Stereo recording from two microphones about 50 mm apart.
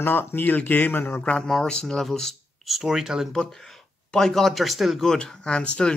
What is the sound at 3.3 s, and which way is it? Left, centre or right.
Speech, centre.